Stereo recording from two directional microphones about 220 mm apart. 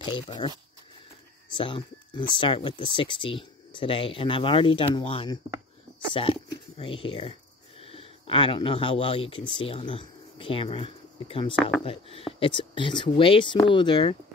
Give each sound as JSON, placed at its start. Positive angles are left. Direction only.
{"t": 0.0, "sound": "speech", "side_deg": 20}
{"t": 1.6, "sound": "speech", "side_deg": 20}